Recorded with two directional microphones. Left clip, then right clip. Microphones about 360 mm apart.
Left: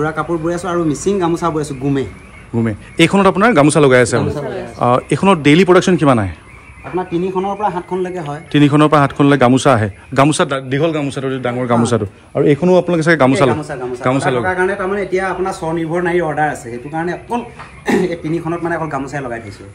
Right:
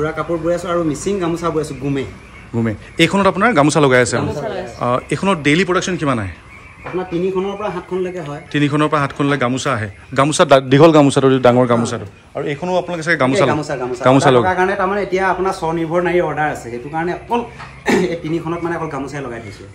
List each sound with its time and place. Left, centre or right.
0.0 s a man's voice: centre
7.6 s a man's voice: centre
12.4 s speech: centre
13.6 s a man's voice: right
14.0 s a man's voice: centre